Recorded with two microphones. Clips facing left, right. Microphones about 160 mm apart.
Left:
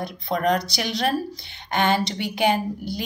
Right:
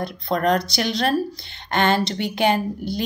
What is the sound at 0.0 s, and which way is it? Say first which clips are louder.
A woman's voice: right 2 dB; 10° left (ahead or behind).